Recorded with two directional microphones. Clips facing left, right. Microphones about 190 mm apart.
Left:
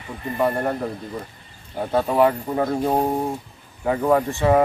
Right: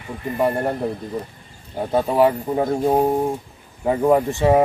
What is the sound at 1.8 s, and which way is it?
Speech, 15° right (ahead or behind).